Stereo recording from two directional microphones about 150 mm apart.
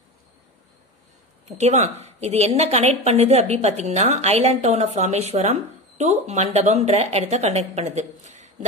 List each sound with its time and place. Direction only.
1.6 s a woman's voice: 50° right (ahead or behind)